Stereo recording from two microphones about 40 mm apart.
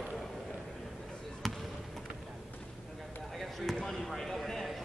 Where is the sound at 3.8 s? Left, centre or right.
Centre.